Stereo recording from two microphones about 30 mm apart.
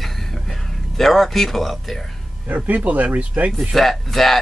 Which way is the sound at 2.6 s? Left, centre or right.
Right.